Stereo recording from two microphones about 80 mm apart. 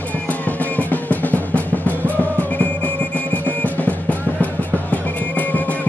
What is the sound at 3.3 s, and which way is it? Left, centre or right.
Music, centre.